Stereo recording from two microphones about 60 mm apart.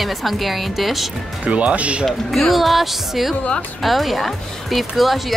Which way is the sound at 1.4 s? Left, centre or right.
Right.